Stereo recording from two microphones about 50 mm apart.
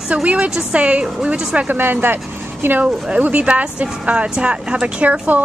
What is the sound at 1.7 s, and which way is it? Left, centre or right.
Speech, right.